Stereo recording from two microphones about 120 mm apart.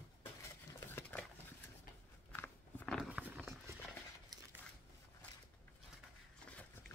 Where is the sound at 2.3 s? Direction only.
10° left (ahead or behind).